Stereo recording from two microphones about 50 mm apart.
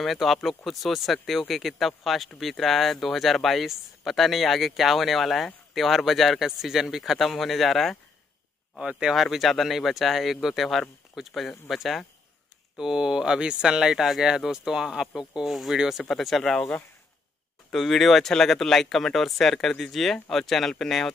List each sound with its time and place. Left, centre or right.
0.0 s speech: centre
8.7 s speech: centre
9.1 s speech: centre
12.7 s speech: centre
17.7 s speech: centre